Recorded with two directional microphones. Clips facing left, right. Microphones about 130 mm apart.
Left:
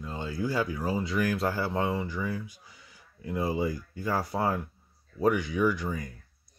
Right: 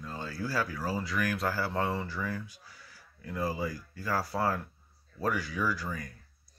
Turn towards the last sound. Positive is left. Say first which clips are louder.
# left 6 dB
turn(degrees=20)  # may be behind; listen again after turning